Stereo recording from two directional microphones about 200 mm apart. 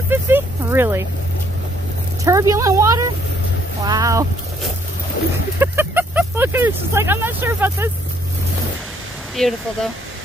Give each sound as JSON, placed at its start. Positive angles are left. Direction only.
{"t": 0.1, "sound": "a sound", "side_deg": -10}
{"t": 2.2, "sound": "speech", "side_deg": -15}
{"t": 5.6, "sound": "speech", "side_deg": -10}
{"t": 9.3, "sound": "speech", "side_deg": 0}